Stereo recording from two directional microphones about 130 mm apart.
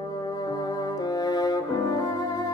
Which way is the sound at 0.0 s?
30° left (ahead or behind).